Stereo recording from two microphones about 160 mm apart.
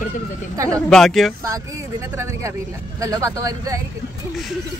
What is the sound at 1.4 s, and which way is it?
Speech, 20° right (ahead or behind).